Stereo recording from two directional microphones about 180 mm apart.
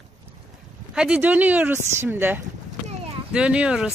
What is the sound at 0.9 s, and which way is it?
Speech, 5° right (ahead or behind).